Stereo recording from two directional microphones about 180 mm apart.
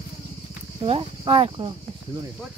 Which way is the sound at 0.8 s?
35° right (ahead or behind).